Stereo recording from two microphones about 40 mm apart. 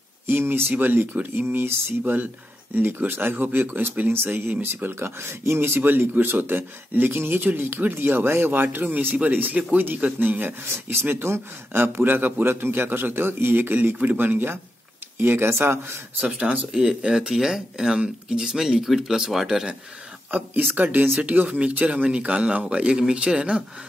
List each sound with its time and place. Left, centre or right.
0.3 s speech: right
4.1 s speech: right
4.9 s speech: right
5.8 s speech: right
10.1 s speech: right
10.6 s speech: right
15.1 s speech: right
16.2 s speech: right; by 17.9 s centre
17.9 s speech: right
20.2 s speech: right